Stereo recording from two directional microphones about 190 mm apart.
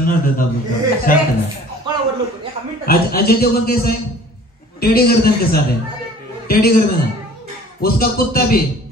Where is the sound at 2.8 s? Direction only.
50° left (ahead or behind).